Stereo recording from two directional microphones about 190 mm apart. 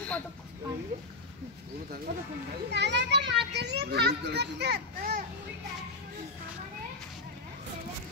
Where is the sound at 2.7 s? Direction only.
65° right (ahead or behind).